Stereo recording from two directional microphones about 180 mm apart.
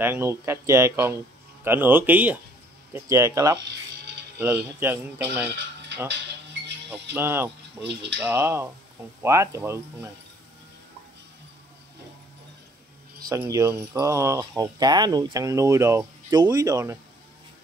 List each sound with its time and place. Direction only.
0.0 s speech: 15° right (ahead or behind)
5.6 s music: 75° right (ahead or behind)
7.2 s speech: 10° right (ahead or behind)
7.8 s speech: 70° right (ahead or behind)
8.2 s speech: 15° right (ahead or behind)
13.3 s speech: 15° right (ahead or behind)